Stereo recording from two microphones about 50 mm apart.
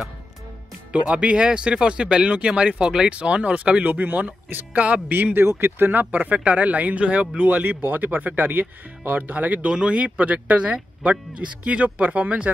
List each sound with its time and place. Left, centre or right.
0.9 s speech: right
5.4 s speech: right
9.7 s speech: right